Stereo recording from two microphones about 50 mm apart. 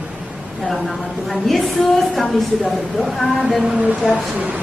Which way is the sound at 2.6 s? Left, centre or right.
Centre.